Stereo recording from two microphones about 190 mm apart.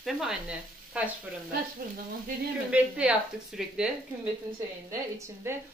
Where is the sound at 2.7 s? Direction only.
5° right (ahead or behind).